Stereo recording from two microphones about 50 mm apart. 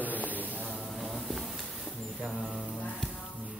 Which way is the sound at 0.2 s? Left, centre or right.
Left.